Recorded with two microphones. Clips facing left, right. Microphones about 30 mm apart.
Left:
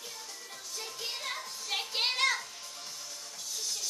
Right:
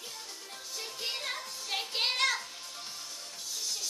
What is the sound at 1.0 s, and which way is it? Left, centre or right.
Music, centre.